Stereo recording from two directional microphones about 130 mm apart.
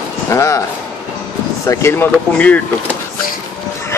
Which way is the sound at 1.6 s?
20° left (ahead or behind).